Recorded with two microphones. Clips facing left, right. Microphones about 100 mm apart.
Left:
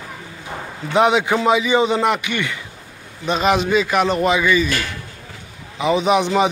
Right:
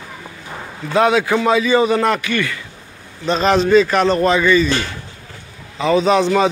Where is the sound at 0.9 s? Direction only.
20° left (ahead or behind).